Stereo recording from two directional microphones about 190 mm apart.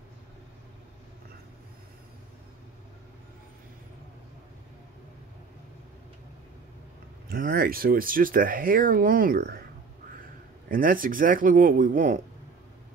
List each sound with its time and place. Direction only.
7.2 s speech: 50° right (ahead or behind)
10.7 s speech: 45° right (ahead or behind)